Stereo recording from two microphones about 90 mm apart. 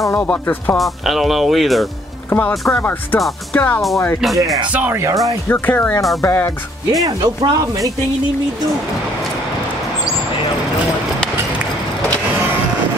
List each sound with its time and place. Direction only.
0.0 s speech: 25° left (ahead or behind)
0.7 s speech: centre (ahead or behind)
2.2 s speech: 20° left (ahead or behind)
4.7 s speech: 25° right (ahead or behind)
5.0 s speech: 40° right (ahead or behind)
5.5 s speech: 20° left (ahead or behind)
6.2 s music: 35° left (ahead or behind)
6.9 s speech: 45° right (ahead or behind)